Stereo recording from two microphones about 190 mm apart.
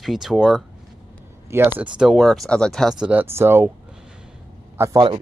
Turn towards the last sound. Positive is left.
turn(degrees=-20)  # may be behind; listen again after turning